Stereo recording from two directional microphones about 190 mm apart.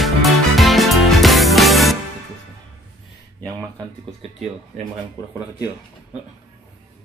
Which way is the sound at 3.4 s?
20° right (ahead or behind).